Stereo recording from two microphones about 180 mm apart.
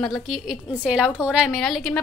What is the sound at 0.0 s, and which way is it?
A woman's voice, centre (ahead or behind).